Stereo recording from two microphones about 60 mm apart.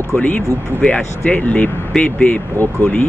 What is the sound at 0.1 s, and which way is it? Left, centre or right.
Speech, left.